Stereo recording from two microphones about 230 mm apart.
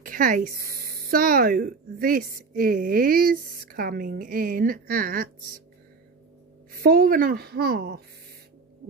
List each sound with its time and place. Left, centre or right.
0.0 s speech: right
6.7 s speech: right